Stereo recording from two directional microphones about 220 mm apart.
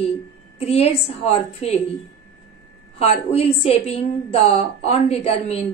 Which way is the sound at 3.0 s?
25° left (ahead or behind).